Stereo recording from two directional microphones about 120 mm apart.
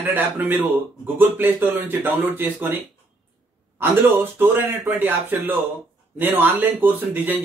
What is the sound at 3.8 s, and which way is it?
Speech, 15° right (ahead or behind).